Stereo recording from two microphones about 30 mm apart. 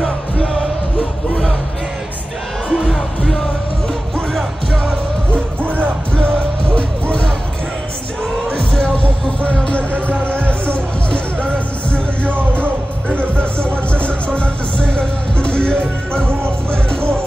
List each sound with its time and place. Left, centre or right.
2.7 s music: centre
6.1 s music: left
8.9 s music: left